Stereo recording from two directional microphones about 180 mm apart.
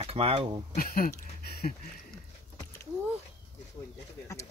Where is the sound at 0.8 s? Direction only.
55° left (ahead or behind).